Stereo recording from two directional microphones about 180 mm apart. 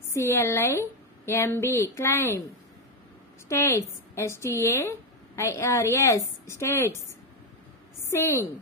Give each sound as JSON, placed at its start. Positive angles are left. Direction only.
{"t": 0.1, "sound": "speech", "side_deg": 15}
{"t": 3.4, "sound": "speech", "side_deg": 15}
{"t": 8.1, "sound": "speech", "side_deg": 15}